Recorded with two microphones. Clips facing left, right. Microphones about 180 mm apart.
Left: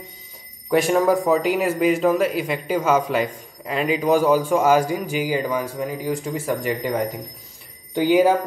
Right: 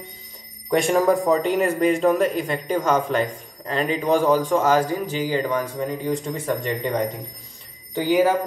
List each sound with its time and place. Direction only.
0.7 s a man's voice: 5° left (ahead or behind)